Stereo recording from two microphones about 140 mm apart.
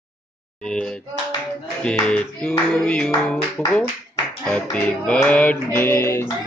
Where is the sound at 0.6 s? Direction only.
5° left (ahead or behind).